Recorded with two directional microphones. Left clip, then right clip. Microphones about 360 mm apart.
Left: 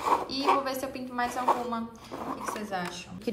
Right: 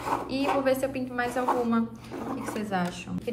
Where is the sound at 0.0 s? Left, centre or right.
Centre.